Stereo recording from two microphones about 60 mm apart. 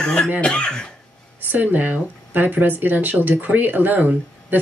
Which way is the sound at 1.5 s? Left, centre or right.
Right.